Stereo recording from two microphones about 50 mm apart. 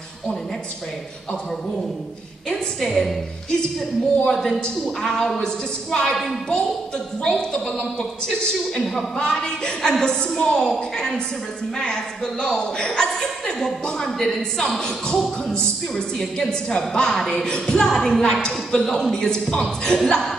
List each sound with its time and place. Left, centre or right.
2.8 s a woman's voice: centre
7.2 s a woman's voice: centre
16.2 s a woman's voice: centre